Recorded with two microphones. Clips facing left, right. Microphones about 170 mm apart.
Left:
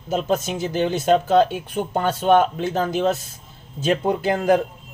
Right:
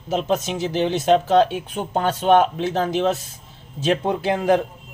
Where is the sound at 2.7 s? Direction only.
Centre (ahead or behind).